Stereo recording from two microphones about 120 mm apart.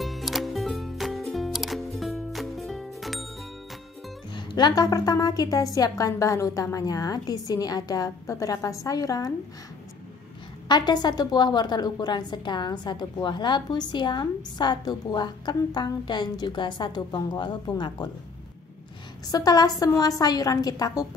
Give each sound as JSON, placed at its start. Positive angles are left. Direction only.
{"t": 0.0, "sound": "music", "side_deg": 0}
{"t": 4.3, "sound": "a woman's voice", "side_deg": 40}
{"t": 10.7, "sound": "a woman's voice", "side_deg": 35}
{"t": 19.2, "sound": "a woman's voice", "side_deg": 30}